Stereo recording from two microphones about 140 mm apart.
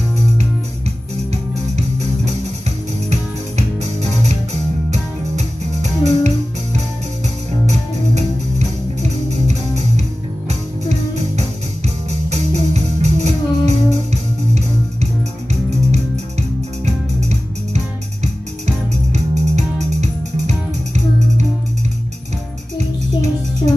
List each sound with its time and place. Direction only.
1.3 s music: 55° right (ahead or behind)
22.8 s music: 55° right (ahead or behind)